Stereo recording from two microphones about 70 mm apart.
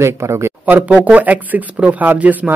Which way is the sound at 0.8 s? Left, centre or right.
Right.